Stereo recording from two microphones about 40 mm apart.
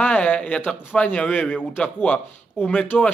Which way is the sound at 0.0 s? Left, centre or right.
Left.